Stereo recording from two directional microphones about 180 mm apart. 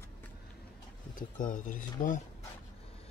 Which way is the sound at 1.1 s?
45° left (ahead or behind).